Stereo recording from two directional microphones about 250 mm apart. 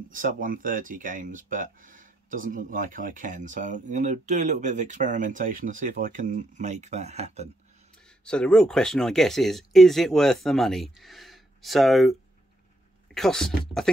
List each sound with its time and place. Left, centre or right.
0.1 s speech: right
8.3 s speech: centre